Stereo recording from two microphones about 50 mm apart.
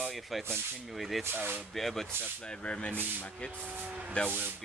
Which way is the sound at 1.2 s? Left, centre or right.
Right.